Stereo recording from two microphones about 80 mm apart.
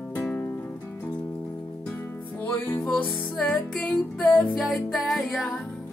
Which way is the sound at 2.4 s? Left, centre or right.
Left.